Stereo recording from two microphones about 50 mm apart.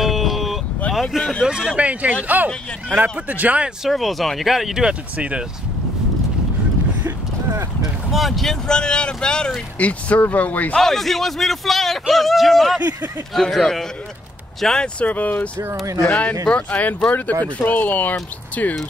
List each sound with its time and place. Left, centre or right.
0.0 s vehicle: centre
1.4 s speech: centre
1.8 s speech: right
3.8 s a man's voice: centre
4.8 s speech: right
8.1 s speech: centre
8.6 s speech: centre
9.8 s speech: left
10.8 s a man's voice: centre
15.0 s speech: left